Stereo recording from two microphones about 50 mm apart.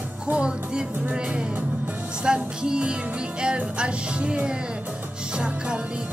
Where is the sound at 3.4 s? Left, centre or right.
Centre.